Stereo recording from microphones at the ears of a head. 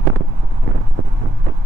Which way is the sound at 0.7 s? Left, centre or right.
Right.